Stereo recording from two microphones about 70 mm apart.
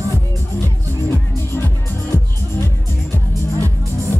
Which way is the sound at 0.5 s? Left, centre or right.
Left.